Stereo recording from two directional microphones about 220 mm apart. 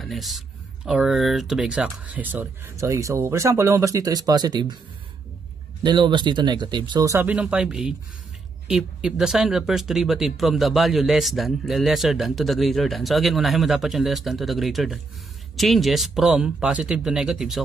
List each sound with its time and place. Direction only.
0.0 s speech: centre (ahead or behind); by 4.7 s 20° right (ahead or behind)
5.9 s speech: 20° right (ahead or behind); by 17.6 s centre (ahead or behind)